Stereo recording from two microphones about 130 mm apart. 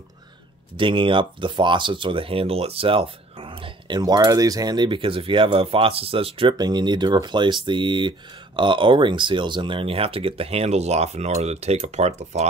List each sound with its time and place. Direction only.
0.7 s speech: 40° right (ahead or behind); by 12.4 s 60° right (ahead or behind)